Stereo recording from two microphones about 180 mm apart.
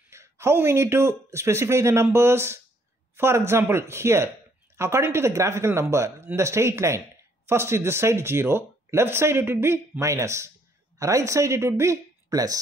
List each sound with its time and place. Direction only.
0.1 s speech: 15° right (ahead or behind)